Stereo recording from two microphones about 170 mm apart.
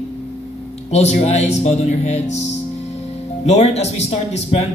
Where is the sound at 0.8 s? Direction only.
40° left (ahead or behind).